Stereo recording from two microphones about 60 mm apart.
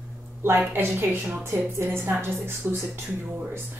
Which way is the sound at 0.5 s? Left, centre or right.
Right.